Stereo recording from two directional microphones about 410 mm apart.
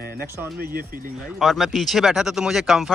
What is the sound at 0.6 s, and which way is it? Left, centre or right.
Speech, right.